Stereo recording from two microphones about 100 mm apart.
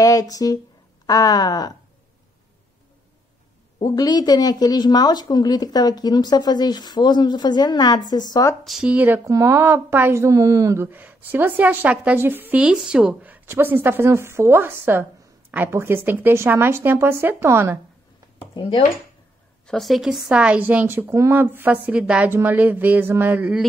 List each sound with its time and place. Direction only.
0.0 s speech: 35° left (ahead or behind)
3.8 s a woman's voice: 40° left (ahead or behind)
8.6 s speech: 5° right (ahead or behind)
8.9 s speech: 20° right (ahead or behind)
9.2 s speech: 30° right (ahead or behind)
10.9 s a woman's voice: 15° right (ahead or behind)
12.6 s a woman's voice: 5° right (ahead or behind); by 17.7 s 25° right (ahead or behind)
19.6 s speech: centre (ahead or behind); by 21.7 s 20° right (ahead or behind)
21.8 s a woman's voice: 10° right (ahead or behind)